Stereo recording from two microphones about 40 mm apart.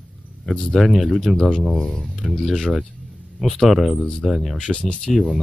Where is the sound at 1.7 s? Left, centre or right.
Centre.